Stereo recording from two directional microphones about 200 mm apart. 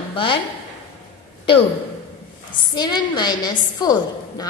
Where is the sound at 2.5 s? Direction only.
20° left (ahead or behind).